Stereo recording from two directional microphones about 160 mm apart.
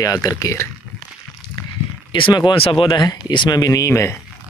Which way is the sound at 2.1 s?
30° left (ahead or behind).